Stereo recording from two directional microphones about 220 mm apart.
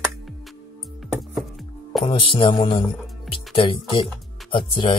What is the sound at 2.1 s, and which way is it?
Speech, 20° left (ahead or behind).